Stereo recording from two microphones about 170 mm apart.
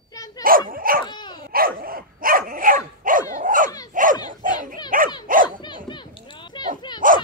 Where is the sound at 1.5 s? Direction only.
60° right (ahead or behind).